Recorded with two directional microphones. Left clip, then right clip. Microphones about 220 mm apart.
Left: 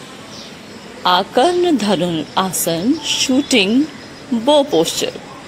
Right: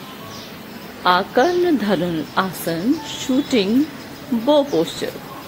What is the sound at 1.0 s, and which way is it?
A woman's voice, 10° left (ahead or behind).